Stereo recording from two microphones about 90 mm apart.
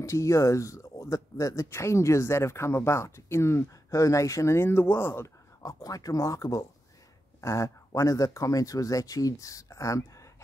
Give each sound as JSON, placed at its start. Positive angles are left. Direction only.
{"t": 0.0, "sound": "speech", "side_deg": 35}
{"t": 5.6, "sound": "speech", "side_deg": 40}